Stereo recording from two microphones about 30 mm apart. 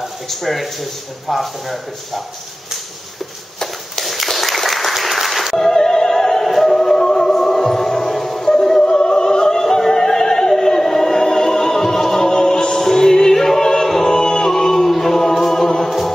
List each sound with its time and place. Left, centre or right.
0.3 s speech: centre
3.9 s applause: centre
5.6 s music: centre
8.8 s opera: left
10.5 s music: centre